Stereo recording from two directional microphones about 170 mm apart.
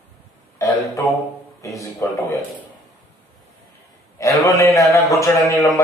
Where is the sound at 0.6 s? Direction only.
20° left (ahead or behind).